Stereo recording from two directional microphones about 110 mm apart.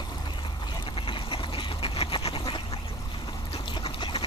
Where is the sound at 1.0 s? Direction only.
50° left (ahead or behind).